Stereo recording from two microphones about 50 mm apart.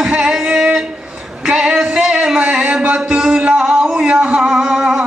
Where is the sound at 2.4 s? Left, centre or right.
Right.